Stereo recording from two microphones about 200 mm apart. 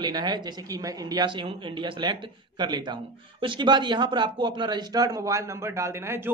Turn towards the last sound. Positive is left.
turn(degrees=-10)  # may be behind; listen again after turning